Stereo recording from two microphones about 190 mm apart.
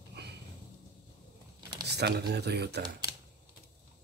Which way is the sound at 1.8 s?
60° right (ahead or behind).